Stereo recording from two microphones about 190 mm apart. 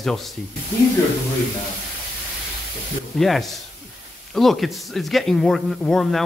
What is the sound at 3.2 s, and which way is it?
A man's voice, centre (ahead or behind).